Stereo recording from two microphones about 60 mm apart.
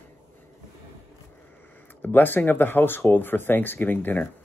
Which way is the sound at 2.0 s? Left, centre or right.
Left.